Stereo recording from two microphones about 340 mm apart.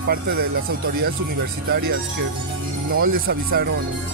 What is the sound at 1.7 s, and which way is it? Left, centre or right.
Speech, right.